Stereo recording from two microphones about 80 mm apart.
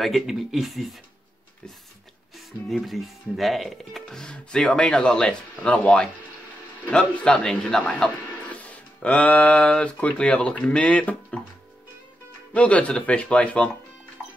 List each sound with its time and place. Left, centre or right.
0.0 s speech: centre
2.7 s speech: centre
12.5 s speech: centre